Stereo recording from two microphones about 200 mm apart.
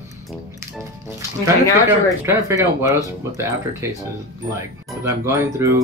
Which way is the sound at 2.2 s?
15° right (ahead or behind).